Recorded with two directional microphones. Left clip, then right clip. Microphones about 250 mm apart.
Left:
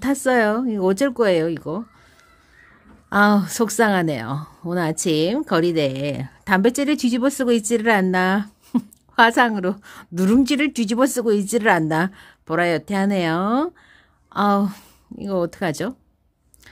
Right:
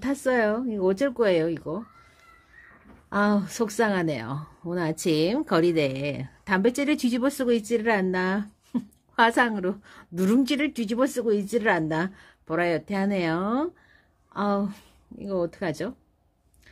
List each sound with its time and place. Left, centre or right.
0.0 s speech: centre
3.1 s speech: centre